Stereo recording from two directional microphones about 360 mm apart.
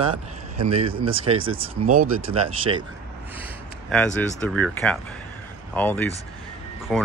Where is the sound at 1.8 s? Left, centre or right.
Right.